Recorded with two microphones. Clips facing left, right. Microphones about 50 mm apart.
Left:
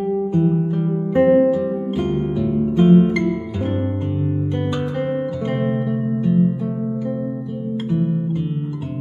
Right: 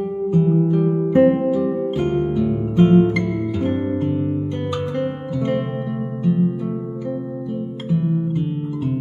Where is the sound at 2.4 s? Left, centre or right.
Centre.